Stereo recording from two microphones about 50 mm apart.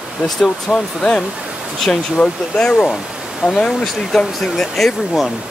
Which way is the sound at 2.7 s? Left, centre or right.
Centre.